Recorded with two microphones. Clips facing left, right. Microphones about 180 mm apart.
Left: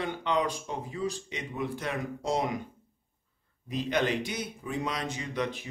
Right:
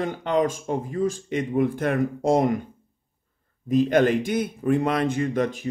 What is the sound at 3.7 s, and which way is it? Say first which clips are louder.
A man's voice: right 10 dB; 50° right (ahead or behind).